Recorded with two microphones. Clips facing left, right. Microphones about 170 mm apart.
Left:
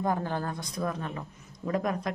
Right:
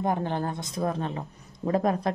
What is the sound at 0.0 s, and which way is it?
Speech, 20° right (ahead or behind).